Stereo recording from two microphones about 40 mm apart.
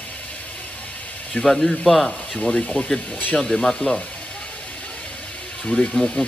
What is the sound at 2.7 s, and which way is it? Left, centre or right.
Speech, left.